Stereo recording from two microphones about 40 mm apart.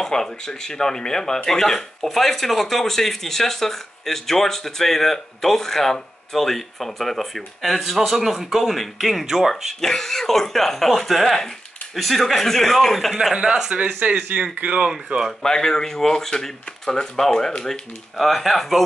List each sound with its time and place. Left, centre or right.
0.0 s speech: centre
9.2 s speech: centre
9.8 s speech: centre
13.3 s speech: right
14.0 s speech: right
15.4 s speech: centre
17.6 s speech: centre